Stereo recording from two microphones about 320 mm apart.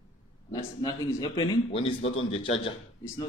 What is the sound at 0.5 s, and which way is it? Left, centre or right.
A man's voice, centre.